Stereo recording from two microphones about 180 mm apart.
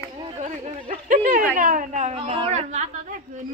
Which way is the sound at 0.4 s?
45° right (ahead or behind).